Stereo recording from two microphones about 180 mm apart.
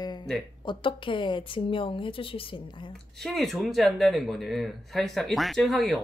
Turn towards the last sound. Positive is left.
turn(degrees=0)  # may be behind; listen again after turning